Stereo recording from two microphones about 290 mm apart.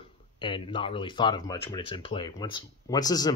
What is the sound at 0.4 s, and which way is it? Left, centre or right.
Speech, centre.